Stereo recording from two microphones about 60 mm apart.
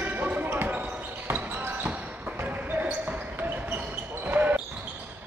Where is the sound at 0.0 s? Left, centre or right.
Right.